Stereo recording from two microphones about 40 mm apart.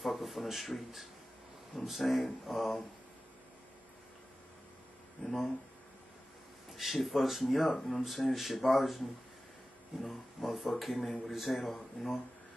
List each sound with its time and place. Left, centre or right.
0.0 s speech: centre
5.2 s speech: centre
6.7 s speech: centre
10.0 s speech: centre